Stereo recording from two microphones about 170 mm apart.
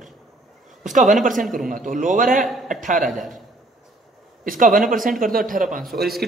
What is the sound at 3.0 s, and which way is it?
Speech, centre (ahead or behind).